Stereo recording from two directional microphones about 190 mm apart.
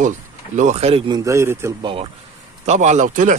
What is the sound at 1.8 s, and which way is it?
Speech, 30° right (ahead or behind).